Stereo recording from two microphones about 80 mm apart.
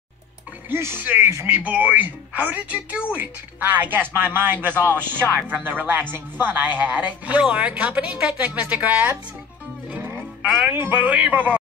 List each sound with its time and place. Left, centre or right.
0.7 s speech: right
1.6 s speech: centre
10.4 s speech: centre
10.7 s speech: right